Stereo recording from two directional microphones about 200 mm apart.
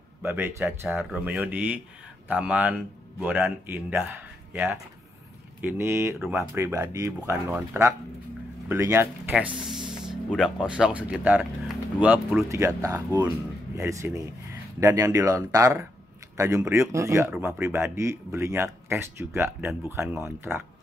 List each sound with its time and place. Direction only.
0.2 s speech: 10° right (ahead or behind)
12.4 s speech: 15° right (ahead or behind)